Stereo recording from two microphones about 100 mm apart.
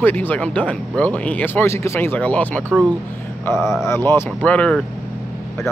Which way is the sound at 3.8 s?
25° left (ahead or behind).